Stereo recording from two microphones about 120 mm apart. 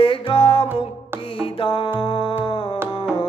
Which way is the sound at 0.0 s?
50° left (ahead or behind).